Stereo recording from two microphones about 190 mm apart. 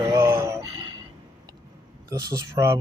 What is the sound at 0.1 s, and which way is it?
Music, 15° right (ahead or behind).